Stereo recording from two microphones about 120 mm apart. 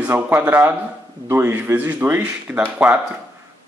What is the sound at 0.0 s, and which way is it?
A man's voice, 15° right (ahead or behind).